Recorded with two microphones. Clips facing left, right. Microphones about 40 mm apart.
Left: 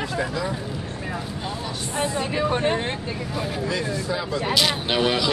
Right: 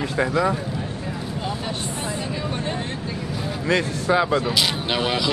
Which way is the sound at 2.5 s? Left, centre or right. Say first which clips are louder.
Left 5 dB; left.